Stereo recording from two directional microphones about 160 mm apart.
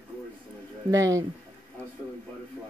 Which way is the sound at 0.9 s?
20° right (ahead or behind).